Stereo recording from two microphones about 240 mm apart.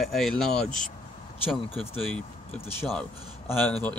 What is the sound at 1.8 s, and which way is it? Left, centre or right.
Speech, centre.